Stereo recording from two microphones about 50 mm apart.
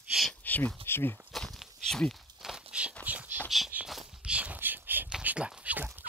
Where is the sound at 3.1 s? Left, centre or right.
Right.